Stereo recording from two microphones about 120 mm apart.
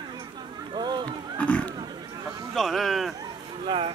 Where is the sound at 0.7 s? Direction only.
40° right (ahead or behind).